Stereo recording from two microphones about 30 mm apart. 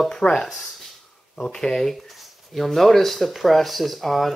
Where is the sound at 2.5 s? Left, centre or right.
Centre.